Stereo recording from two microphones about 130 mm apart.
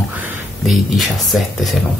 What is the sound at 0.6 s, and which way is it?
Speech, centre (ahead or behind).